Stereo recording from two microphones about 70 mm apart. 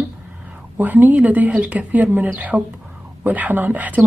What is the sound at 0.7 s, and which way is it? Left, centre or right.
Speech, right.